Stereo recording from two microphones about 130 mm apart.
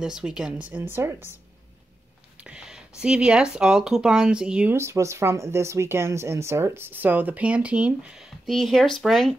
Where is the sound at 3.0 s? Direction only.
5° right (ahead or behind).